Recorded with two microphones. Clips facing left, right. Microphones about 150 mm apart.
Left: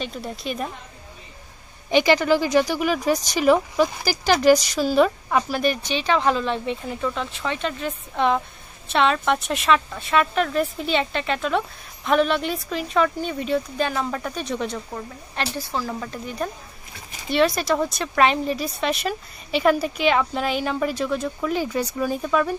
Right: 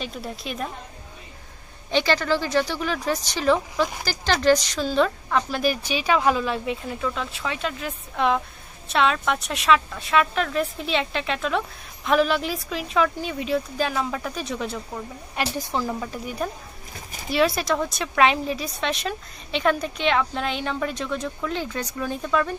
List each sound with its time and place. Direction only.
0.0 s speech: centre (ahead or behind)
1.9 s speech: 15° left (ahead or behind)
5.6 s speech: 5° right (ahead or behind)
15.3 s a woman's voice: 15° right (ahead or behind)
15.9 s a woman's voice: 5° right (ahead or behind)